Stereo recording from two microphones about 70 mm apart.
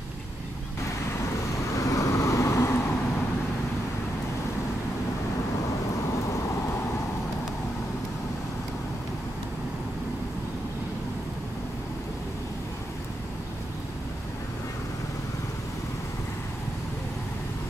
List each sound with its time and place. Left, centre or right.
1.7 s vehicle: left
6.2 s vehicle: left